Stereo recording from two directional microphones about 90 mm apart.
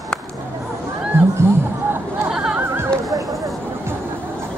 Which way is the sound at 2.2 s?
5° right (ahead or behind).